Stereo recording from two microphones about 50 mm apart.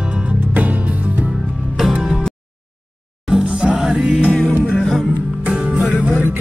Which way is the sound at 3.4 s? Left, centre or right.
Centre.